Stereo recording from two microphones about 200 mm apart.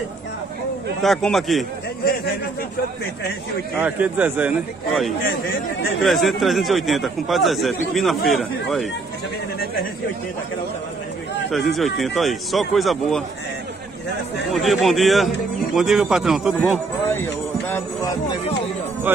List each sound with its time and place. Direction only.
1.0 s speech: centre (ahead or behind)
3.8 s a man's voice: 10° right (ahead or behind)
5.2 s speech: 50° left (ahead or behind)
5.9 s speech: centre (ahead or behind)
11.5 s speech: centre (ahead or behind)
14.5 s speech: centre (ahead or behind)
17.1 s music: 10° left (ahead or behind)